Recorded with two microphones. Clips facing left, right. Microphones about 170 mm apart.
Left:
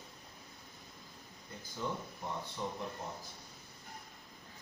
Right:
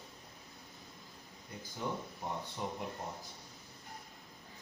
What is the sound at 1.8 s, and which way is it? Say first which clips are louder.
Speech: even; 10° right (ahead or behind).